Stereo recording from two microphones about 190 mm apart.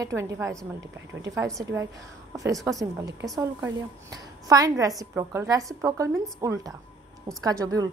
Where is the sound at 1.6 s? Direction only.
15° right (ahead or behind).